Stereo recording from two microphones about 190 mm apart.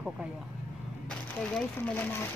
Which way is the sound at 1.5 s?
5° left (ahead or behind).